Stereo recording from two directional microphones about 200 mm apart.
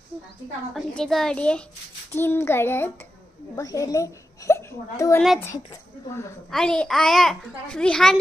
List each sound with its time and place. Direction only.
0.7 s a child's voice: centre (ahead or behind)
6.5 s a child's voice: 5° left (ahead or behind)